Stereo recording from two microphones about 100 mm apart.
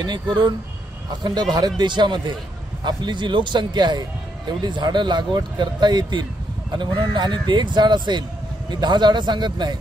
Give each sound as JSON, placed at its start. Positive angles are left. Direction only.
{"t": 0.0, "sound": "speech", "side_deg": -45}